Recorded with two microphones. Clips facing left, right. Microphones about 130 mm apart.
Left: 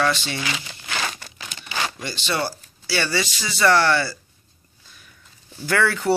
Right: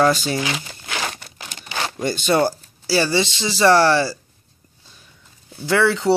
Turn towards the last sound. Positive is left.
turn(degrees=-20)  # may be behind; listen again after turning